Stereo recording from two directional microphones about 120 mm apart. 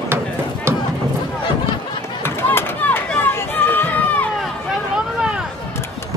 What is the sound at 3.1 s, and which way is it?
Run, 15° left (ahead or behind).